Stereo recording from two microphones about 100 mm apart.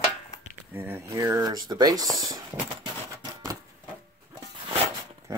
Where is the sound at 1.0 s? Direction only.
35° right (ahead or behind).